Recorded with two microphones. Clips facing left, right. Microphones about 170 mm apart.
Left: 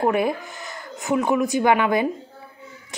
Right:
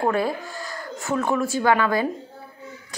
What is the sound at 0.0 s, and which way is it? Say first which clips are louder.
A woman's voice: left 2 dB; 20° left (ahead or behind).